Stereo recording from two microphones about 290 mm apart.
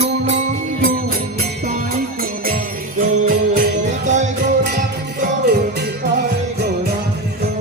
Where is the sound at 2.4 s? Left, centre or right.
Right.